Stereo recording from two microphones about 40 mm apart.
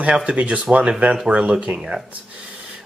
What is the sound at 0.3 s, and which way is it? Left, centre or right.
Speech, right.